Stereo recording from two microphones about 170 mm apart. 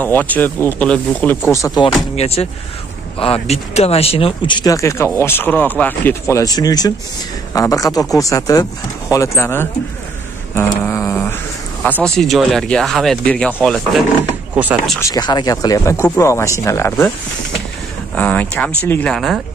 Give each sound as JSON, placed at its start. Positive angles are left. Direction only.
{"t": 0.0, "sound": "speech", "side_deg": 10}
{"t": 1.5, "sound": "speech", "side_deg": 20}
{"t": 2.1, "sound": "speech", "side_deg": 35}
{"t": 10.5, "sound": "a sound", "side_deg": 15}
{"t": 11.8, "sound": "speech", "side_deg": 10}
{"t": 14.5, "sound": "speech", "side_deg": -10}
{"t": 15.0, "sound": "speech", "side_deg": 20}
{"t": 18.1, "sound": "speech", "side_deg": 10}